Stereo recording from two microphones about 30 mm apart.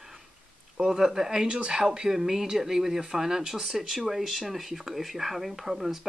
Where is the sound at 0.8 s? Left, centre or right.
Centre.